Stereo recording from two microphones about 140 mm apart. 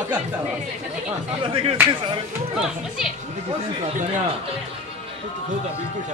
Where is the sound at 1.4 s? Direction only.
40° right (ahead or behind).